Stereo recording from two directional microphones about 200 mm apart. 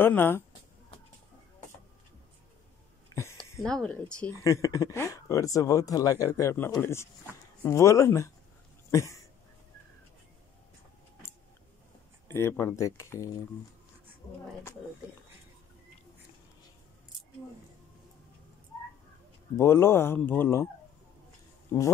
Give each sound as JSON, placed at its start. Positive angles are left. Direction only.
{"t": 0.0, "sound": "speech", "side_deg": 10}
{"t": 3.6, "sound": "speech", "side_deg": 5}
{"t": 4.4, "sound": "speech", "side_deg": 15}
{"t": 8.9, "sound": "a sound", "side_deg": 15}
{"t": 12.3, "sound": "speech", "side_deg": 10}
{"t": 19.5, "sound": "speech", "side_deg": 10}